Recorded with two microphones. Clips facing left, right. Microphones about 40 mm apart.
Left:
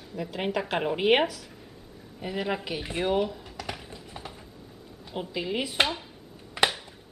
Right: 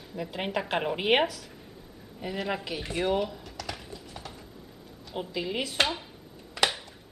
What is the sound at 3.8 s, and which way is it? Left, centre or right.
Typing, centre.